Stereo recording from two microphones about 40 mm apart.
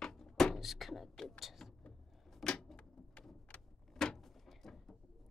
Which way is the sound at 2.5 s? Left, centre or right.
Centre.